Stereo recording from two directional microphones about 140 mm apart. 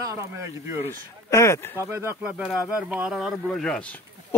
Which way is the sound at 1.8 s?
15° right (ahead or behind).